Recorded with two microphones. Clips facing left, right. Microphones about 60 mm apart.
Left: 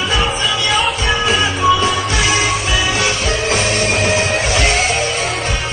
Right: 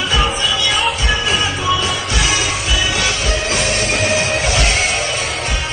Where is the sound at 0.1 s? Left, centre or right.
Left.